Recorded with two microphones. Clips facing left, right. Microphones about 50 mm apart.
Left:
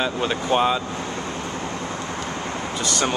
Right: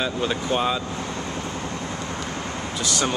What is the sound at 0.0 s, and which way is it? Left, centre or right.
Speech, centre.